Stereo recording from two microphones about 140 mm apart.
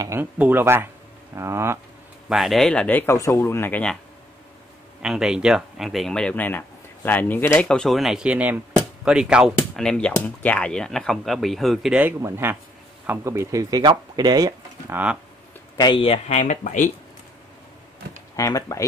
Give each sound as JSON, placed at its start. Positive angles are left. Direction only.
{"t": 0.0, "sound": "speech", "side_deg": -15}
{"t": 2.2, "sound": "speech", "side_deg": -5}
{"t": 5.0, "sound": "speech", "side_deg": -5}
{"t": 12.0, "sound": "speech", "side_deg": -20}
{"t": 14.9, "sound": "speech", "side_deg": -10}
{"t": 15.8, "sound": "speech", "side_deg": 35}
{"t": 18.3, "sound": "speech", "side_deg": 25}